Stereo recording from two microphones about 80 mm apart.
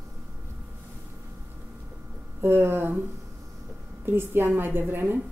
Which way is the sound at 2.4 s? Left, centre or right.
Right.